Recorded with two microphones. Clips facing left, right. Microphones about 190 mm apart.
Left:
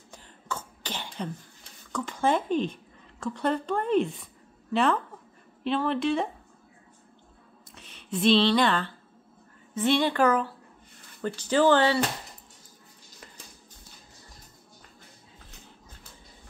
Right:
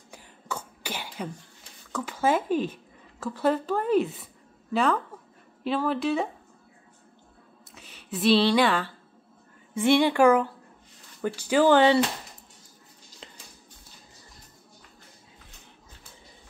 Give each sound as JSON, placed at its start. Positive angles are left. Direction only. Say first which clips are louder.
{"t": 0.1, "sound": "throat clearing", "louder": "right 1 dB", "side_deg": -10}
{"t": 1.9, "sound": "speech", "louder": "right 1 dB", "side_deg": -5}
{"t": 5.6, "sound": "speech", "louder": "even", "side_deg": -5}
{"t": 7.7, "sound": "speech", "louder": "left 3 dB", "side_deg": -5}